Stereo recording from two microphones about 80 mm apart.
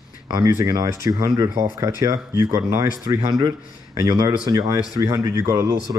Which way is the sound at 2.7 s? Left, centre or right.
Right.